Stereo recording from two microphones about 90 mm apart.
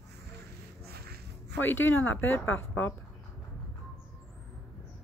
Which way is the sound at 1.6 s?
25° left (ahead or behind).